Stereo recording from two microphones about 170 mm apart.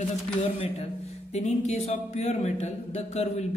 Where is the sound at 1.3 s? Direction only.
40° left (ahead or behind).